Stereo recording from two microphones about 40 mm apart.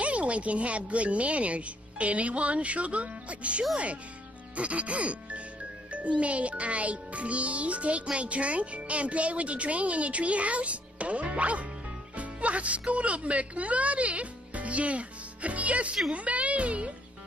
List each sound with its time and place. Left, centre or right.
0.0 s a child's voice: right